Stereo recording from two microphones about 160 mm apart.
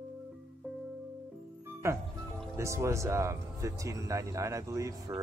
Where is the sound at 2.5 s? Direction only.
15° right (ahead or behind).